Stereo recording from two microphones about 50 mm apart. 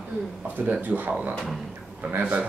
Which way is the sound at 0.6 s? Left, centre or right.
Right.